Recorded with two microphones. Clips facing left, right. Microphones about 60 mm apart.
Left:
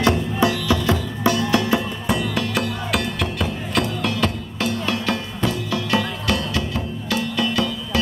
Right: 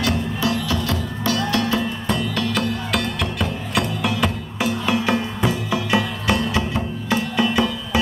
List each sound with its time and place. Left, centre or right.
0.0 s music: left; by 3.8 s centre
4.0 s music: centre